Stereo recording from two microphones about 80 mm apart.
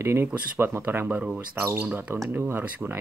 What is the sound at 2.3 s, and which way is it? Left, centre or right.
Speech, right.